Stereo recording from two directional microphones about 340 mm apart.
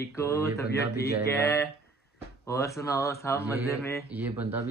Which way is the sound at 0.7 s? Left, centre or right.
Left.